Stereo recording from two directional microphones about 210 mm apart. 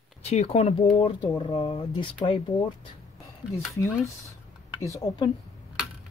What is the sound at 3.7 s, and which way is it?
Speech, 15° left (ahead or behind).